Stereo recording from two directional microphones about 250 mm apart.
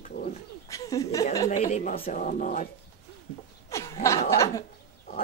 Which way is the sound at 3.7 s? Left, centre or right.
Centre.